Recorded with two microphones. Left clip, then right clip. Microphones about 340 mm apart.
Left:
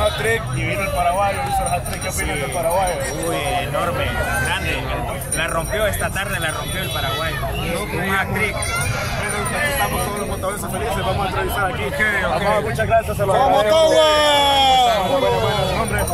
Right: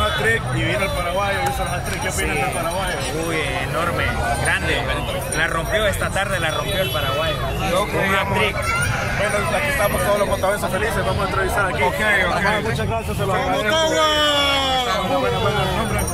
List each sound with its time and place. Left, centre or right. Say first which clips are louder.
13.4 s speech: left 6 dB; centre